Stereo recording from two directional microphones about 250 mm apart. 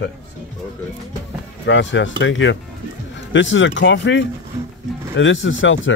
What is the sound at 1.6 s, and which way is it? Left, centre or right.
Speech, left.